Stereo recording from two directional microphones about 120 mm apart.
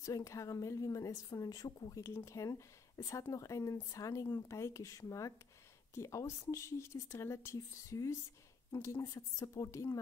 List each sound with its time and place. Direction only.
0.0 s a woman's voice: 30° left (ahead or behind)